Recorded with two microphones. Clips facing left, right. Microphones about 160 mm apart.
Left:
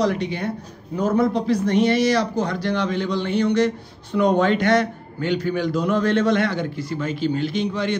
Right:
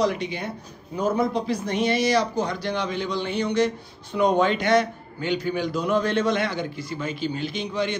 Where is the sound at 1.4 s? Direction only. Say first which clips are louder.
Left 6 dB; 65° left (ahead or behind).